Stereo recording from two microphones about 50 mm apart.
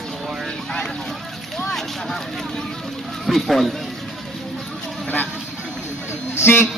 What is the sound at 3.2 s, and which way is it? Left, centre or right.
Speech, centre.